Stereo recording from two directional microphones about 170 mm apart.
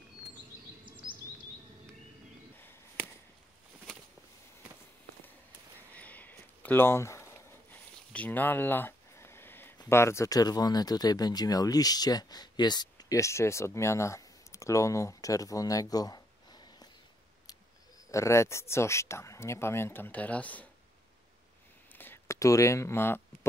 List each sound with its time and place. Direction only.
0.8 s bird vocalization: 30° right (ahead or behind)
5.9 s a sound: 10° left (ahead or behind)
9.8 s speech: 15° left (ahead or behind)
18.1 s speech: 15° left (ahead or behind)
21.9 s speech: 10° left (ahead or behind)